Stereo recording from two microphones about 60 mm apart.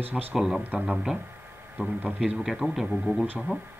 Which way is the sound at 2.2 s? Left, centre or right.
Centre.